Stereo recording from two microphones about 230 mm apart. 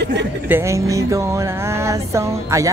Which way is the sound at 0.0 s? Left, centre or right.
Right.